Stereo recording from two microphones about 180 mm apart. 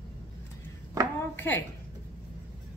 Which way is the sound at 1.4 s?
10° left (ahead or behind).